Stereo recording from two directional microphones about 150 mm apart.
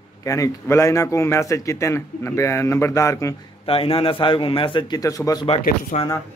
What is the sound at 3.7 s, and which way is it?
A man's voice, 35° left (ahead or behind).